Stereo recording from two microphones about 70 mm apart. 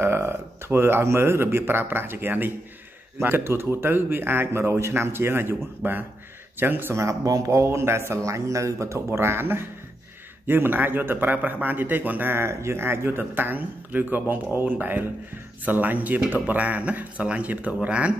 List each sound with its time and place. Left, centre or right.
0.0 s speech: right
7.2 s speech: right; by 18.1 s centre